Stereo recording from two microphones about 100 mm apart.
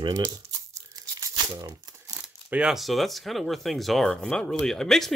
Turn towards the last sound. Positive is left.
turn(degrees=5)  # may be behind; listen again after turning